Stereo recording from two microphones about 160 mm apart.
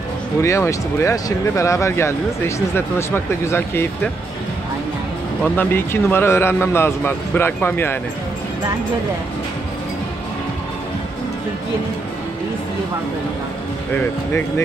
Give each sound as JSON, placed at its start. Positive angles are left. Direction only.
{"t": 0.4, "sound": "speech", "side_deg": 20}
{"t": 5.4, "sound": "speech", "side_deg": 15}